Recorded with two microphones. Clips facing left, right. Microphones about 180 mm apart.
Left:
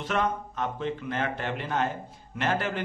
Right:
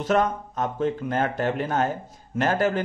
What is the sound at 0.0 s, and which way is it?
A man's voice, 40° right (ahead or behind).